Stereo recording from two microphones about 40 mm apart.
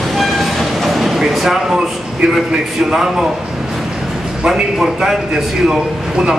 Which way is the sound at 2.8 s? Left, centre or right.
Centre.